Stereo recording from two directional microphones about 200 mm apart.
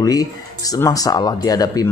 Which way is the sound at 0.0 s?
15° left (ahead or behind).